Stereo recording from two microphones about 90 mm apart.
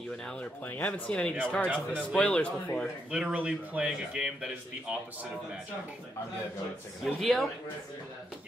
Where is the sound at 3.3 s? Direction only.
15° right (ahead or behind).